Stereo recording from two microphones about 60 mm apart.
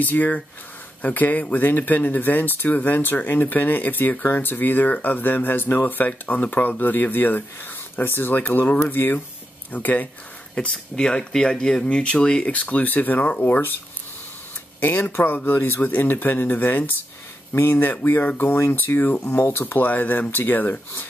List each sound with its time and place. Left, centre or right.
0.0 s speech: left
10.5 s speech: centre; by 13.7 s left
14.8 s speech: left